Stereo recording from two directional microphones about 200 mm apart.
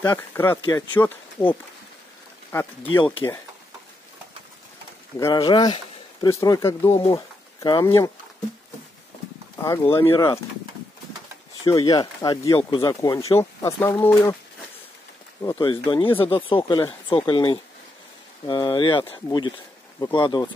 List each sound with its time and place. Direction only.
0.0 s speech: 15° left (ahead or behind)
5.2 s speech: 20° left (ahead or behind)
10.0 s speech: 25° left (ahead or behind)
11.6 s speech: 15° left (ahead or behind)
15.4 s speech: 20° left (ahead or behind)